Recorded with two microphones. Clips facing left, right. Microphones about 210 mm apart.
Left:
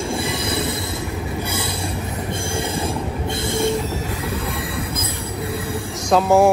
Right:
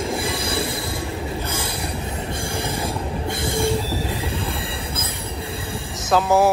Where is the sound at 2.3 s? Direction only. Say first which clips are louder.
Left 3 dB; 25° left (ahead or behind).